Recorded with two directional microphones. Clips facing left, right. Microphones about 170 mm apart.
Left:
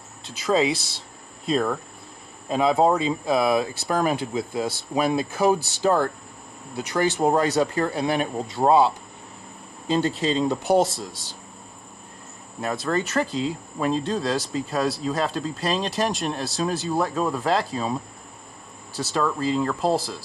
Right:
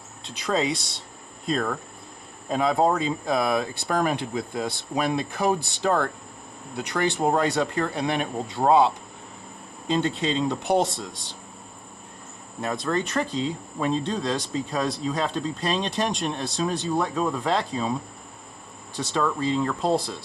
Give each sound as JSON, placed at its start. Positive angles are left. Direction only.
{"t": 0.2, "sound": "speech", "side_deg": 0}
{"t": 12.5, "sound": "speech", "side_deg": 0}
{"t": 18.9, "sound": "speech", "side_deg": 0}